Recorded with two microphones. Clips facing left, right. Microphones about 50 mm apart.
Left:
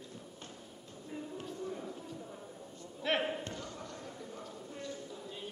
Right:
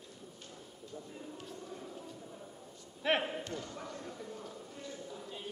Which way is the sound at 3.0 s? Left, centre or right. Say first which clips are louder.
Right 2 dB; centre.